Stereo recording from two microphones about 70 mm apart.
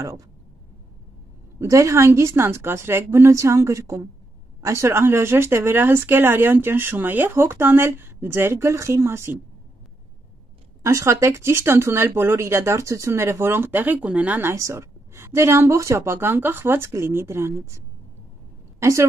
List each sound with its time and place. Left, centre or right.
0.0 s speech: right
1.6 s speech: right
10.8 s speech: right
14.4 s a woman's voice: right